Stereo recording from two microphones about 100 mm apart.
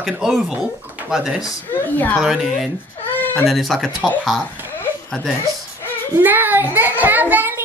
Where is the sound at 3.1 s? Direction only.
20° left (ahead or behind).